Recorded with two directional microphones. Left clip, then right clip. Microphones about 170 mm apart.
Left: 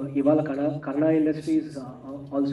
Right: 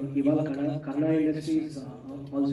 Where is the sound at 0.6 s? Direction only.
25° left (ahead or behind).